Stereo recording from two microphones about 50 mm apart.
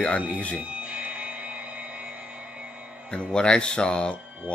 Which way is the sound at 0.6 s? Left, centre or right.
Right.